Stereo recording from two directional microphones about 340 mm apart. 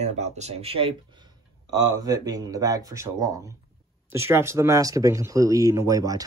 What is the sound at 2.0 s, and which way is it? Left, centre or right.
Speech, centre.